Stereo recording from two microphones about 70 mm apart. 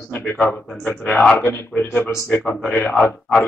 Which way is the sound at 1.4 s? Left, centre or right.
Left.